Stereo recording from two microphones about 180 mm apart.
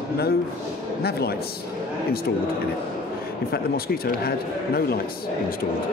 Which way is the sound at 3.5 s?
60° left (ahead or behind).